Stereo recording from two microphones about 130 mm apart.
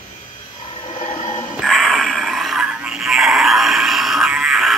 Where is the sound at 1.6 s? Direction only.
Centre (ahead or behind).